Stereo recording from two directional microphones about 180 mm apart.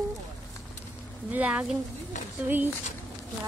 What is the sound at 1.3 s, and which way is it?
Speech, 5° right (ahead or behind).